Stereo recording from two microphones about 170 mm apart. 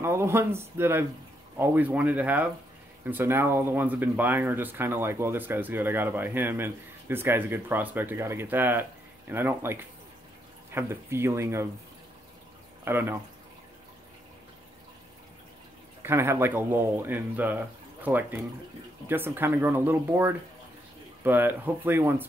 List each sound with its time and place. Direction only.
0.0 s speech: 15° right (ahead or behind)
12.8 s speech: 15° right (ahead or behind)
16.0 s speech: 15° right (ahead or behind)